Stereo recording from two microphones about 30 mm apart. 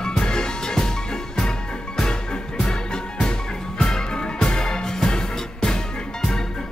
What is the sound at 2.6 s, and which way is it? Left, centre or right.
Music, left.